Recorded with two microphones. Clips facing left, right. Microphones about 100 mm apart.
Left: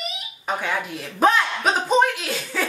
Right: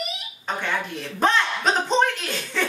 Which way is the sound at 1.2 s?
5° left (ahead or behind).